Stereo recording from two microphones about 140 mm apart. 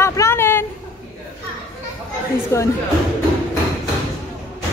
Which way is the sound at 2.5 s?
20° left (ahead or behind).